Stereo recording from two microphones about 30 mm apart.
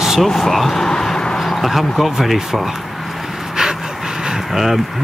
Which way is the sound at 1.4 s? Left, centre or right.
Centre.